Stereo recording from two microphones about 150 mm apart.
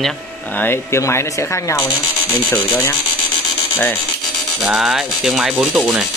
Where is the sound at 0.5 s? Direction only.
15° left (ahead or behind).